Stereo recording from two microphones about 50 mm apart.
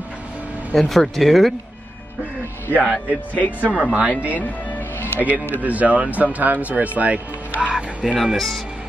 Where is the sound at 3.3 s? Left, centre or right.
Left.